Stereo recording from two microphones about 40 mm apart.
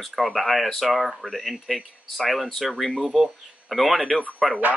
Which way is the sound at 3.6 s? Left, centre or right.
Centre.